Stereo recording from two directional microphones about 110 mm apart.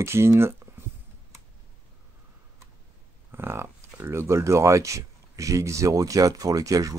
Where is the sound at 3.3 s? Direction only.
20° right (ahead or behind).